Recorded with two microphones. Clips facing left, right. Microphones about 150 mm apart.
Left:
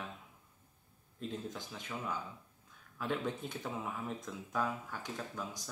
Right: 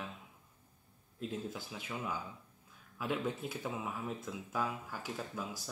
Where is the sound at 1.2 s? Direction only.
5° right (ahead or behind).